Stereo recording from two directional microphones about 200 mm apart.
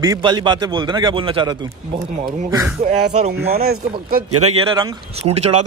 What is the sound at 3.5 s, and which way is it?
Speech, 50° right (ahead or behind).